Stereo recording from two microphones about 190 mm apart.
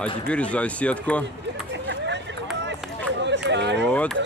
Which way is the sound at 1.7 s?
70° right (ahead or behind).